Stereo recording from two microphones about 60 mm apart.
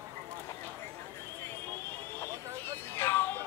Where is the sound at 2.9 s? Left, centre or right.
Left.